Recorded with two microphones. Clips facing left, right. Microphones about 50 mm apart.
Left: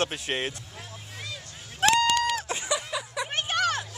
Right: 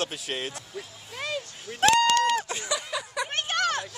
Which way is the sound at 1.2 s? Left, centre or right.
Right.